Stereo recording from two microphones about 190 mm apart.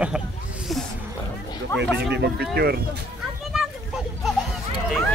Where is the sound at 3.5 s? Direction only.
5° right (ahead or behind).